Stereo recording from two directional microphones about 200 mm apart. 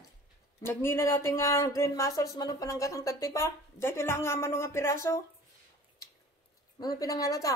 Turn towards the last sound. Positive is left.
turn(degrees=15)  # may be behind; listen again after turning